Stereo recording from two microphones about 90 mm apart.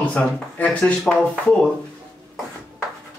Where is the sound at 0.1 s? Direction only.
15° left (ahead or behind).